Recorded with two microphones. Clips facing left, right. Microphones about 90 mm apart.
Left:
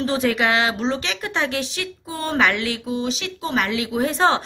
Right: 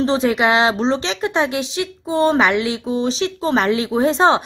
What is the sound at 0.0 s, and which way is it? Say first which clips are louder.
Speech: right 4 dB; 25° right (ahead or behind).